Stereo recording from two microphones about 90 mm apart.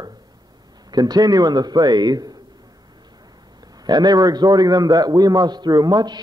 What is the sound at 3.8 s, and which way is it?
A man's voice, 50° right (ahead or behind).